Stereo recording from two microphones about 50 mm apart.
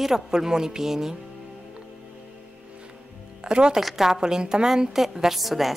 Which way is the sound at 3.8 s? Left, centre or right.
Centre.